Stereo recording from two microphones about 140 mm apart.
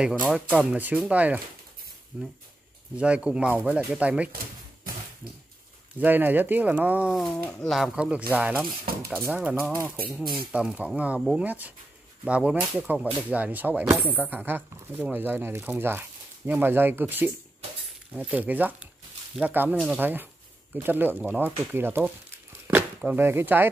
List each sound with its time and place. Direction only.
0.7 s speech: 10° right (ahead or behind)
5.9 s speech: 15° right (ahead or behind)
8.9 s stir: 90° right
9.2 s speech: 10° right (ahead or behind)